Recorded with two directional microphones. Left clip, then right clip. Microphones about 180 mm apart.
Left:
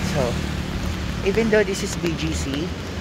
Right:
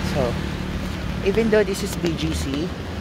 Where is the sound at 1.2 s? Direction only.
5° right (ahead or behind).